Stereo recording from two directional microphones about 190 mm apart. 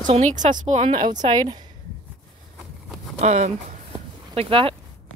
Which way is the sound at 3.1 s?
35° right (ahead or behind).